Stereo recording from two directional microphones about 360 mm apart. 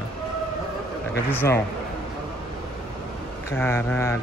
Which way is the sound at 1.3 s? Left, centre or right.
Centre.